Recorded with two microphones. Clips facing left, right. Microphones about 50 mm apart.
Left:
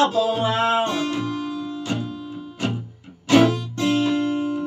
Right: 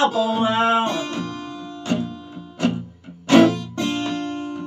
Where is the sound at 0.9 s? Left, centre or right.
Centre.